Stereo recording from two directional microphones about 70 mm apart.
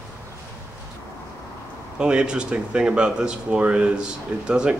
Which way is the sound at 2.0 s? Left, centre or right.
Centre.